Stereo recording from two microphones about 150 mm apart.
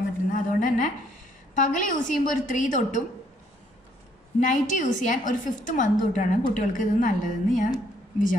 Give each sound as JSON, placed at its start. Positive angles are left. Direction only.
{"t": 0.3, "sound": "a sound", "side_deg": 60}
{"t": 1.5, "sound": "a woman's voice", "side_deg": 60}
{"t": 4.4, "sound": "a woman's voice", "side_deg": 55}